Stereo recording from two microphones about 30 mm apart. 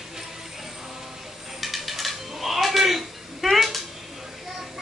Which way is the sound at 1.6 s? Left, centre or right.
Centre.